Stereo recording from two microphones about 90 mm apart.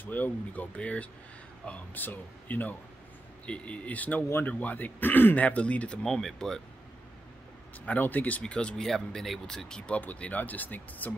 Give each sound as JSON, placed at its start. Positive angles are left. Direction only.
{"t": 0.0, "sound": "speech", "side_deg": 20}
{"t": 7.8, "sound": "speech", "side_deg": 20}